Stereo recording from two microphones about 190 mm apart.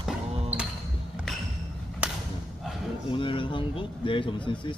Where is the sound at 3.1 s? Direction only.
25° left (ahead or behind).